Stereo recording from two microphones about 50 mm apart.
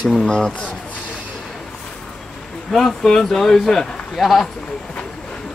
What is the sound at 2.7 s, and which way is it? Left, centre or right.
Speech, centre.